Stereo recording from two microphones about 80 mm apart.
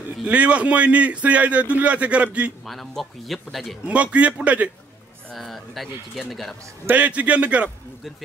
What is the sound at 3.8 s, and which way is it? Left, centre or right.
Speech, centre.